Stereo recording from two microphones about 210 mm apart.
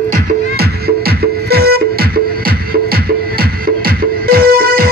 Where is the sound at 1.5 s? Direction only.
50° right (ahead or behind).